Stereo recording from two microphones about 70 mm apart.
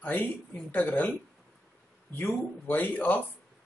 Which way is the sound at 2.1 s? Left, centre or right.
Left.